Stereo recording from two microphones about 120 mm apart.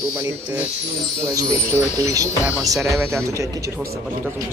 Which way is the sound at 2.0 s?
30° right (ahead or behind).